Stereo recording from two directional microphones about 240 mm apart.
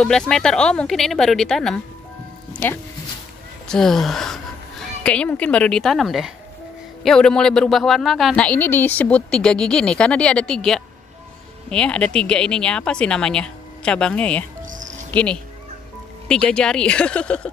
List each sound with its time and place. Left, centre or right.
0.0 s speech: centre
2.5 s music: centre
3.6 s speech: centre
14.6 s music: right
15.0 s speech: centre